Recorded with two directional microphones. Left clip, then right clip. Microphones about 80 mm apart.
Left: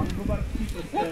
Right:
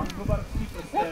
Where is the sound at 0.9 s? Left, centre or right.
Right.